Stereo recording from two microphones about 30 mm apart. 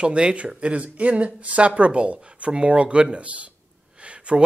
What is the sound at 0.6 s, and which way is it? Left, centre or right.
Speech, right.